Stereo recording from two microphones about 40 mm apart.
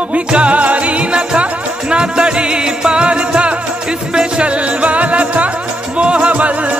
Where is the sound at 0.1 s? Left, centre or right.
Right.